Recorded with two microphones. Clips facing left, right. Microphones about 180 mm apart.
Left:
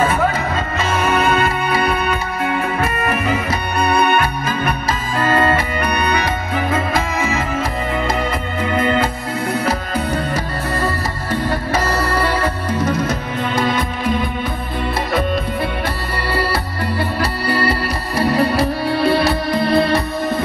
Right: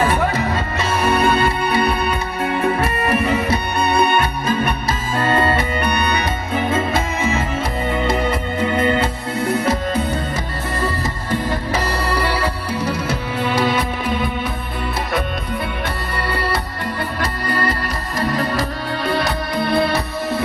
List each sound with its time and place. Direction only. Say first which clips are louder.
2.8 s music: right 1 dB; 30° right (ahead or behind)
5.2 s music: left 2 dB; 30° right (ahead or behind)
12.0 s music: left 2 dB; 10° right (ahead or behind)
17.2 s music: left 2 dB; 5° left (ahead or behind)